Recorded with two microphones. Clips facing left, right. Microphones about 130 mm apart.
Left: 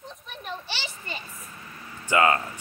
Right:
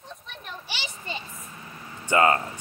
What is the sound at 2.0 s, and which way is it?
Speech, 30° right (ahead or behind).